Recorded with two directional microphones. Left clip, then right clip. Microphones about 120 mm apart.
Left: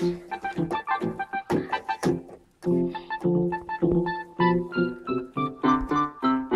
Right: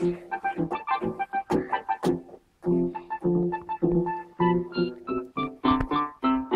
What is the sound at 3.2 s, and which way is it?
Organ, 15° left (ahead or behind).